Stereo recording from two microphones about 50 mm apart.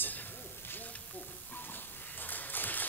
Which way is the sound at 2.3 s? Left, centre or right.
Left.